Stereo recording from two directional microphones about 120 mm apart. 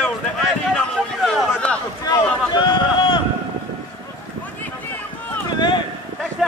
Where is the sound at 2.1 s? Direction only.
40° left (ahead or behind).